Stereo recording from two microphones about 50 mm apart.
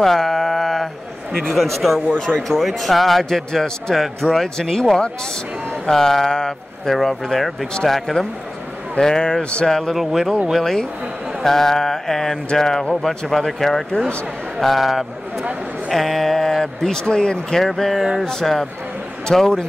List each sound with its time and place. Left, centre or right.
0.0 s a sound: centre
1.8 s speech: centre; by 9.7 s left
9.7 s speech: centre
9.9 s speech: centre
10.5 s speech: centre
17.6 s speech: centre